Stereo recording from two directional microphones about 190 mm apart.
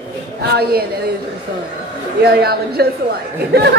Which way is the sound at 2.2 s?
55° right (ahead or behind).